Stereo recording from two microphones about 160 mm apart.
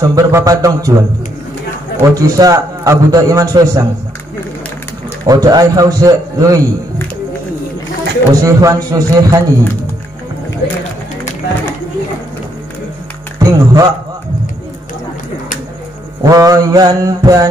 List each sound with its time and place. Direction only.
0.0 s a man's voice: 25° right (ahead or behind)
5.2 s a man's voice: 25° right (ahead or behind)
8.2 s a man's voice: 20° right (ahead or behind)
13.4 s speech: 25° right (ahead or behind)
16.2 s a man's voice: 20° right (ahead or behind)